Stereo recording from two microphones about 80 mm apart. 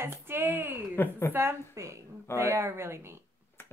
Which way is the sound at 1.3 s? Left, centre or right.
Right.